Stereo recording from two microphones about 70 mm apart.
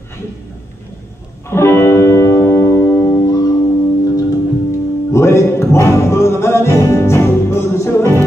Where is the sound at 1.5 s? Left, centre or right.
Left.